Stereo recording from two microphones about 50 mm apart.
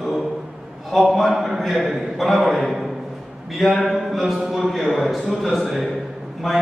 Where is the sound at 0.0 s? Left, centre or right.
Centre.